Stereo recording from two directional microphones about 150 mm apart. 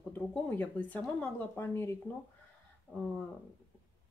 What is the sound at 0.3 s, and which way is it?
A woman's voice, 10° left (ahead or behind).